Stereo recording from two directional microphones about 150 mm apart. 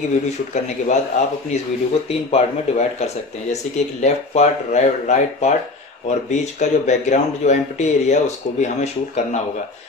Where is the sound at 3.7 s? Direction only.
50° left (ahead or behind).